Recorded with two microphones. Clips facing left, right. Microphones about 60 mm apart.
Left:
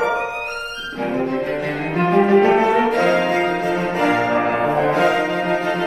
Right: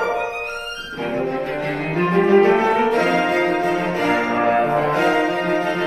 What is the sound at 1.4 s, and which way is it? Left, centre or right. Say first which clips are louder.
Cello: left 1 dB; right.